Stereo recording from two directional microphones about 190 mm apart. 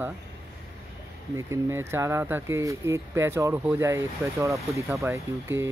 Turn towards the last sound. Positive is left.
turn(degrees=-10)  # may be behind; listen again after turning